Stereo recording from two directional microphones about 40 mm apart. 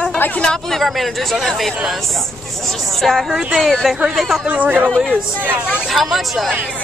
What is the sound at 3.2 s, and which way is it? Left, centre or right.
Speech, centre.